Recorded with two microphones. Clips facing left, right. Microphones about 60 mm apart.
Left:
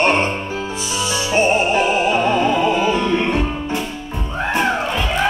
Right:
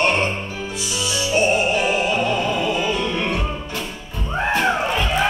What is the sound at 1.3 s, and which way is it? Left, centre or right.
Music, left.